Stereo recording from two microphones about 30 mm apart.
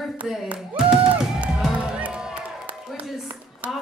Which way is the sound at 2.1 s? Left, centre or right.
Right.